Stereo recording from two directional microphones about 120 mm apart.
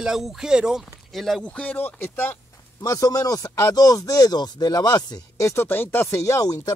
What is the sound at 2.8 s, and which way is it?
Speech, 30° left (ahead or behind).